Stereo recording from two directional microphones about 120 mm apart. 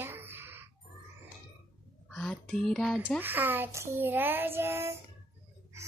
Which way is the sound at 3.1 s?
15° right (ahead or behind).